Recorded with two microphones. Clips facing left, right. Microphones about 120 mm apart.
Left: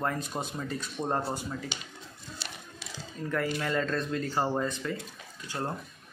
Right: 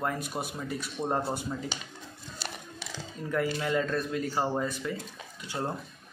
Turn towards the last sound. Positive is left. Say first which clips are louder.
# right 1 dB
turn(degrees=-15)  # may be behind; listen again after turning